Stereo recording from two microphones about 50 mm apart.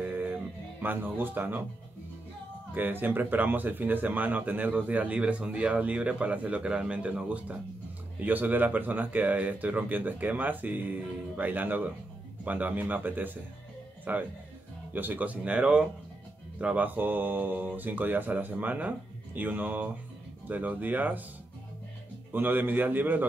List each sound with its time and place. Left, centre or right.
0.0 s music: right
2.7 s speech: right
22.3 s speech: right